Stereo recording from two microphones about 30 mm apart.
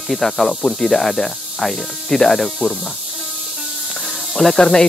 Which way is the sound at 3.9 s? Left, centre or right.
Centre.